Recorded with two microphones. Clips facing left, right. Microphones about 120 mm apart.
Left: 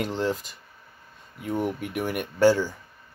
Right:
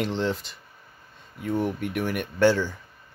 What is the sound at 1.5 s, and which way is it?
Speech, 10° left (ahead or behind).